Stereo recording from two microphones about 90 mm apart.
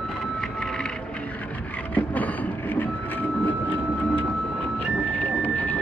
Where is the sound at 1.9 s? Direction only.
20° left (ahead or behind).